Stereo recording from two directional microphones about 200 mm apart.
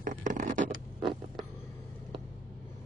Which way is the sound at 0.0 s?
40° right (ahead or behind).